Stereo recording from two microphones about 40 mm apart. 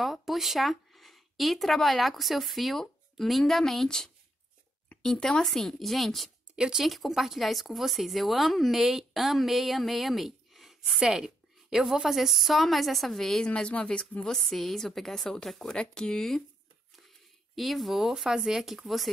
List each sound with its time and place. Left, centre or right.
0.0 s speech: centre
5.4 s speech: centre
6.5 s speech: right
6.8 s speech: centre
11.0 s speech: centre
13.5 s speech: left
14.2 s a woman's voice: centre
17.6 s speech: centre